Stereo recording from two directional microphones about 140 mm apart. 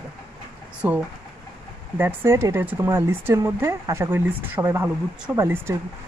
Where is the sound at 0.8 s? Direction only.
10° right (ahead or behind).